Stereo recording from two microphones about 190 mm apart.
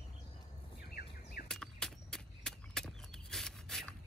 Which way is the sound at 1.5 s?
5° left (ahead or behind).